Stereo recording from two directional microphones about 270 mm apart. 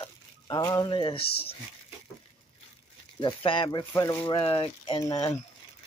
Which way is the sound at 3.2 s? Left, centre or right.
Centre.